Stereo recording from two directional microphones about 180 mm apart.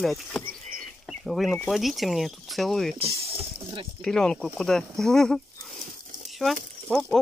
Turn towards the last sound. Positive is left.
turn(degrees=0)  # may be behind; listen again after turning